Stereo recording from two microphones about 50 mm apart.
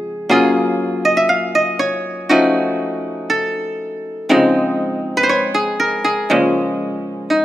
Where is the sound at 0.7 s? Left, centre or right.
Left.